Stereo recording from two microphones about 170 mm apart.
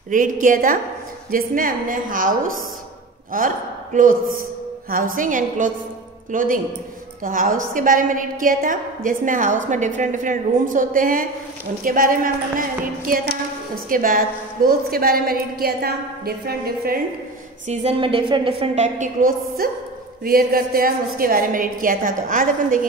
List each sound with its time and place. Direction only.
0.1 s a woman's voice: 50° right (ahead or behind)
3.3 s a woman's voice: 50° right (ahead or behind)
17.6 s a woman's voice: 35° right (ahead or behind); by 22.8 s 55° right (ahead or behind)